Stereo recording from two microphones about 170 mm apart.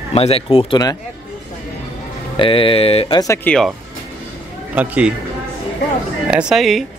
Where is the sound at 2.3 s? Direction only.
30° left (ahead or behind).